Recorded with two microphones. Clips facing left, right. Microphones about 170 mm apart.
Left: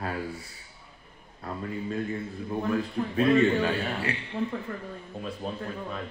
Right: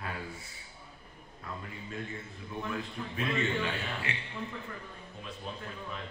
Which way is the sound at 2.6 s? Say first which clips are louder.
Left 9 dB; 35° left (ahead or behind).